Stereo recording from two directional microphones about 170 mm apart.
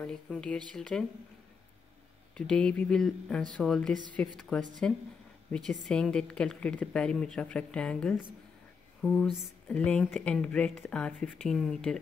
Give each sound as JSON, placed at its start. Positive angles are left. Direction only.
{"t": 0.0, "sound": "a woman's voice", "side_deg": 5}
{"t": 2.3, "sound": "a woman's voice", "side_deg": 5}